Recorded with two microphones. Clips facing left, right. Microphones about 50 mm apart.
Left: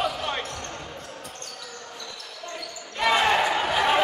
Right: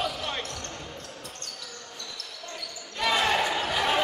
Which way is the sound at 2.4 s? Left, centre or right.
Centre.